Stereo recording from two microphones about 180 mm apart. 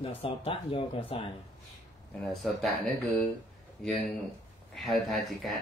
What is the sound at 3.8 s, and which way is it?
Speech, 5° left (ahead or behind).